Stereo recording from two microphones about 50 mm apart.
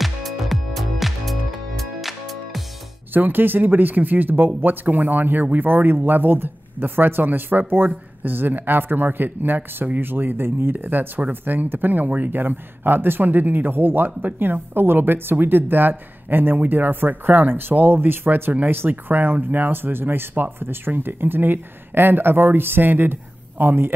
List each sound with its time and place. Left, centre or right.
0.0 s music: centre
3.1 s speech: right